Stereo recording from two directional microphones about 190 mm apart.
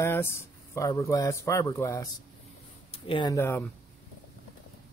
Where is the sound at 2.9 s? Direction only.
25° left (ahead or behind).